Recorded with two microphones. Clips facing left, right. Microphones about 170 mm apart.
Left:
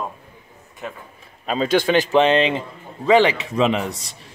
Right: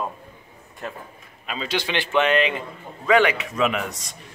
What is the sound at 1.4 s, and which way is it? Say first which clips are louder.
Speech: left 9 dB; 40° left (ahead or behind).